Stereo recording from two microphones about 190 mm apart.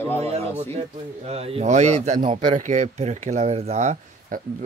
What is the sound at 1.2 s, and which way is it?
Speech, 30° right (ahead or behind).